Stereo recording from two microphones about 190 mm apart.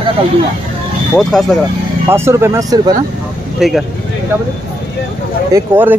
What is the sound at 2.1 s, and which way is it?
Speech, 15° right (ahead or behind).